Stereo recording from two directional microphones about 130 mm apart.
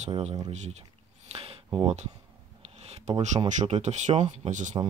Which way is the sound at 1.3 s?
45° right (ahead or behind).